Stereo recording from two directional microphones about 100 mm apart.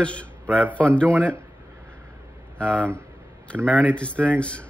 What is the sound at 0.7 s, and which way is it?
Speech, 10° left (ahead or behind).